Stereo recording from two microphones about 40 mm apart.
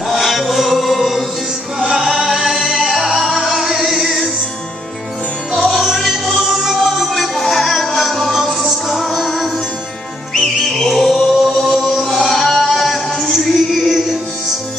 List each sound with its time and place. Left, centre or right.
0.1 s music: centre
1.8 s music: centre
5.5 s music: centre
10.6 s music: centre
11.3 s music: centre